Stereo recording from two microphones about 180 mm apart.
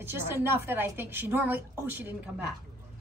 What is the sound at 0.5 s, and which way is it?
A woman's voice, 10° right (ahead or behind).